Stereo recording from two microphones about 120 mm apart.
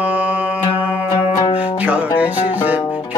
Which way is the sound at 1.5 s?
15° right (ahead or behind).